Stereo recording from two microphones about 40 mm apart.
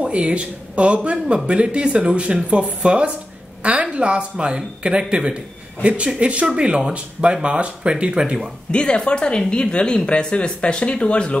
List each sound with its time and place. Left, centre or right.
0.1 s speech: right
8.2 s speech: centre
8.7 s speech: left